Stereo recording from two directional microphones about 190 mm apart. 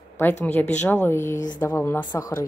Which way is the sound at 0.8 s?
10° left (ahead or behind).